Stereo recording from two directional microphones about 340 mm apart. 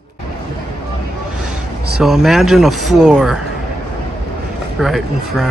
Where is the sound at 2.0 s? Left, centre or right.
Centre.